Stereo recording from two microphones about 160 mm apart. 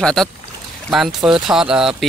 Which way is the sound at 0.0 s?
5° left (ahead or behind).